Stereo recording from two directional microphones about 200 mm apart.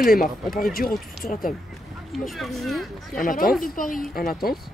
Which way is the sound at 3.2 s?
45° left (ahead or behind).